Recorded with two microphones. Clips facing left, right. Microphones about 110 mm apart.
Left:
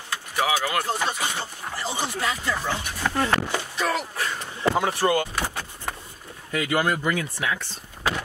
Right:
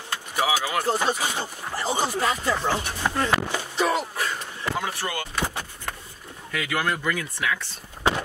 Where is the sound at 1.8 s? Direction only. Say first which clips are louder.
Right 4 dB; 45° right (ahead or behind).